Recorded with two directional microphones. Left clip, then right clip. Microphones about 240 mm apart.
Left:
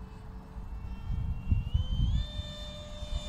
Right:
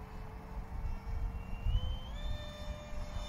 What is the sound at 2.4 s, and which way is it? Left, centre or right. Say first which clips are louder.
Vehicle: left 4 dB; left.